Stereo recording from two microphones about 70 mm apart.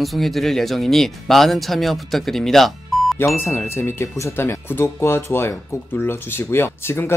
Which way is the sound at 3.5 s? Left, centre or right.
Left.